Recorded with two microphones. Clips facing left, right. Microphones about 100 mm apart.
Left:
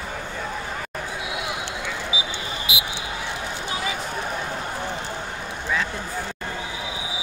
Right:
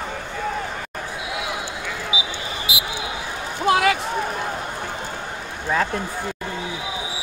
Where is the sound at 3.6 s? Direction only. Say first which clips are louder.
Right 14 dB; 75° right (ahead or behind).